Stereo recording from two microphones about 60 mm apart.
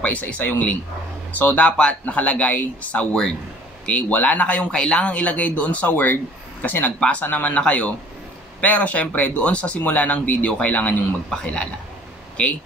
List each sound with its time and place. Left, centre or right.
0.0 s a man's voice: left